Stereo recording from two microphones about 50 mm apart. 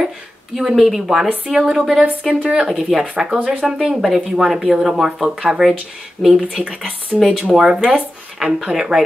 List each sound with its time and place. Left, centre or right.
0.6 s speech: centre
7.5 s speech: centre